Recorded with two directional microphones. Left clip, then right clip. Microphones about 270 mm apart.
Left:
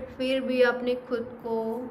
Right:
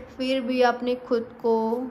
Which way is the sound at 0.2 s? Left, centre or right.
Centre.